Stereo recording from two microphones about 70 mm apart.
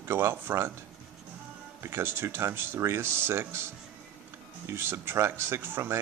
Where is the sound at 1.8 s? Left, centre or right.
Right.